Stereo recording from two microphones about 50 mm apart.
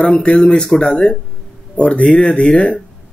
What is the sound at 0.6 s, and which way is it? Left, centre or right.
Speech, centre.